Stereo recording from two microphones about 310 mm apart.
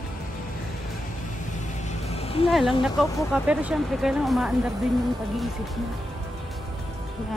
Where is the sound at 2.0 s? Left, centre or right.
Centre.